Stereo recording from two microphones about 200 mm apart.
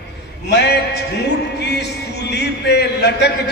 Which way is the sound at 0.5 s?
55° left (ahead or behind).